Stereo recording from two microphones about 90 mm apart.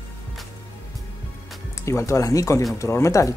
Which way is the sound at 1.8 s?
35° left (ahead or behind).